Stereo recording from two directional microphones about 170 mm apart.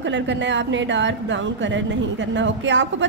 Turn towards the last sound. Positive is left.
turn(degrees=-90)